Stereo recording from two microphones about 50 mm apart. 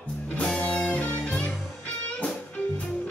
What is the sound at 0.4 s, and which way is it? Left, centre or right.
Music, left.